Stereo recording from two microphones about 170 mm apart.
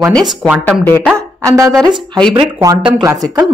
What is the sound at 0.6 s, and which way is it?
Speech, 10° left (ahead or behind).